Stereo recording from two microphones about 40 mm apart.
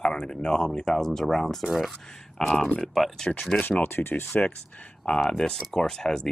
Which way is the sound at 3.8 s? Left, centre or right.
Left.